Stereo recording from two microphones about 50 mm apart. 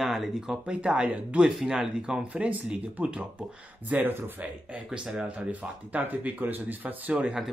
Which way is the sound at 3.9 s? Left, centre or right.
Right.